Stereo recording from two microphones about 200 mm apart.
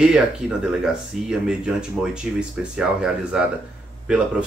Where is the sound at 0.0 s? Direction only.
5° right (ahead or behind).